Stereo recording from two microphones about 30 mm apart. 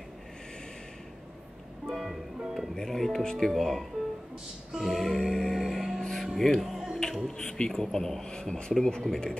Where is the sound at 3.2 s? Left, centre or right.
Left.